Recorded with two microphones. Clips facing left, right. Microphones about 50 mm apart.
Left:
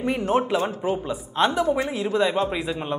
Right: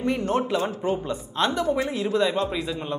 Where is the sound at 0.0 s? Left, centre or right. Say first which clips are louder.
Left 2 dB; centre.